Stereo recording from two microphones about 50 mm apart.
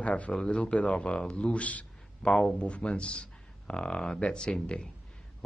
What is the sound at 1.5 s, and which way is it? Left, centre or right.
Speech, left.